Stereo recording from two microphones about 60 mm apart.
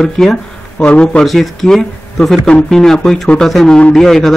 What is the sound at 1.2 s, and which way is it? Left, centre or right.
Speech, centre.